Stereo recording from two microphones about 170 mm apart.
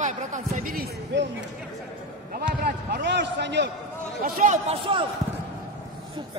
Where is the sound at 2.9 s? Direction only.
90° right.